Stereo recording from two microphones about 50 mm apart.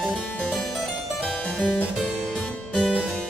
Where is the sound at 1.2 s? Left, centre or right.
Left.